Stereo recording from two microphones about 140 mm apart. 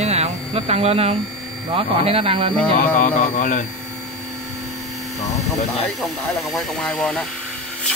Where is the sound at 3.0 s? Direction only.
65° left (ahead or behind).